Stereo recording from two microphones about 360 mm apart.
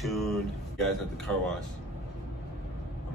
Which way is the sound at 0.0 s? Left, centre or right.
Centre.